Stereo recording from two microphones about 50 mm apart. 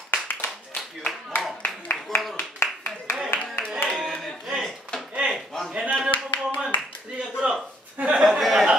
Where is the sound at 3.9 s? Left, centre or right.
Centre.